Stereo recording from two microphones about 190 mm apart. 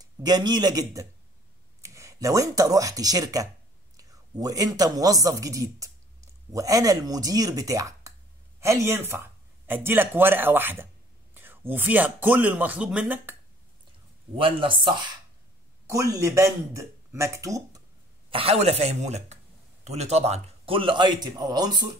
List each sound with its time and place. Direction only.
0.0 s a man's voice: 20° right (ahead or behind)
14.3 s a man's voice: 30° right (ahead or behind)
15.9 s speech: 15° right (ahead or behind)
18.3 s a man's voice: 30° right (ahead or behind)